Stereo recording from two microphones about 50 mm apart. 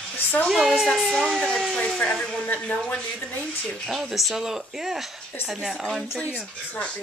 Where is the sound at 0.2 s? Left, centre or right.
Left.